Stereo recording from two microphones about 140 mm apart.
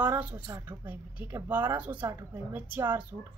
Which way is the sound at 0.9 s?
10° right (ahead or behind).